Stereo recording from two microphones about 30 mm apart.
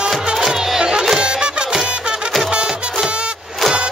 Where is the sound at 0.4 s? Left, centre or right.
Right.